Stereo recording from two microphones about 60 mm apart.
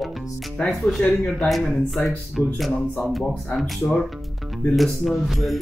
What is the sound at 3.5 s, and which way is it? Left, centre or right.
Music, centre.